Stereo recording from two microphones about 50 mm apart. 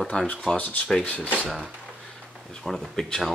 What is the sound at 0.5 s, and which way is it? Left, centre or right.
Speech, left.